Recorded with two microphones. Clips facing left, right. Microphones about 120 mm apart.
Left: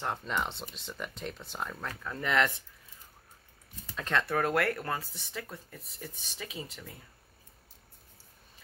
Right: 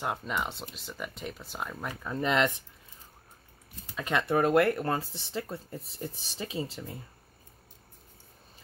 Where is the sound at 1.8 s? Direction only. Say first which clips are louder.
Right 4 dB; 15° right (ahead or behind).